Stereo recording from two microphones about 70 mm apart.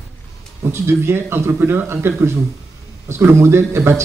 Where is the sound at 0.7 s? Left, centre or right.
Right.